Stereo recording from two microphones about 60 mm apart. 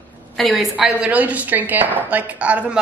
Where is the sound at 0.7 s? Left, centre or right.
Centre.